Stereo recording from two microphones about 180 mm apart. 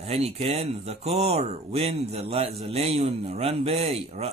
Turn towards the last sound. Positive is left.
turn(degrees=-35)  # may be behind; listen again after turning